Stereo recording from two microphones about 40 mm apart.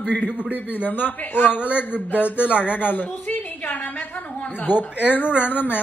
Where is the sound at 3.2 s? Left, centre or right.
Left.